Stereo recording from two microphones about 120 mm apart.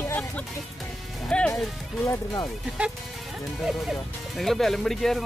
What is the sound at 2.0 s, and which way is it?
Speech, 30° left (ahead or behind).